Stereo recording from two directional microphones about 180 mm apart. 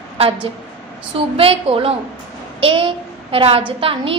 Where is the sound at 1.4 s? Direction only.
30° right (ahead or behind).